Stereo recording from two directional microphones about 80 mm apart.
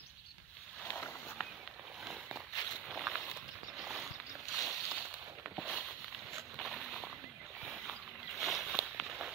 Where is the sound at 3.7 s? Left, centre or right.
Centre.